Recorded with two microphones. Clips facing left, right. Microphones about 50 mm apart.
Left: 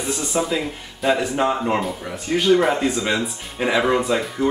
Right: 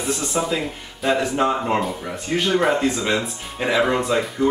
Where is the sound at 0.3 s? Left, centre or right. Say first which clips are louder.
Left 3 dB; centre.